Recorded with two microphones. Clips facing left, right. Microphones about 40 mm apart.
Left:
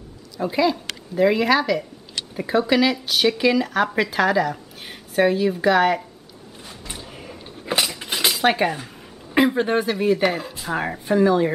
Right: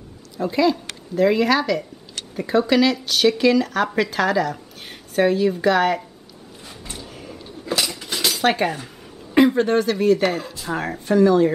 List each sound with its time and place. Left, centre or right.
0.4 s speech: centre
6.9 s a sound: centre
7.7 s cutlery: left
8.0 s cutlery: centre
8.4 s speech: centre